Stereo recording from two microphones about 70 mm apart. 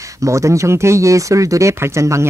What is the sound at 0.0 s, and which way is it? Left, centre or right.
Speech, right.